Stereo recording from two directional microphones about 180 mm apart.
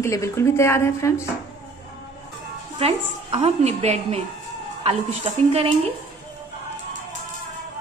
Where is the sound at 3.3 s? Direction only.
35° right (ahead or behind).